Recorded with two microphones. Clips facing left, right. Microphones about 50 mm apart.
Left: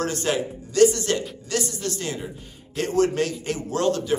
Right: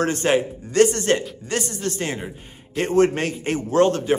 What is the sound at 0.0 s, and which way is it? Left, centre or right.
Speech, right.